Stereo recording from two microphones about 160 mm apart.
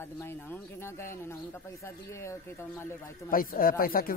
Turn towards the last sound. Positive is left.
turn(degrees=65)  # may be behind; listen again after turning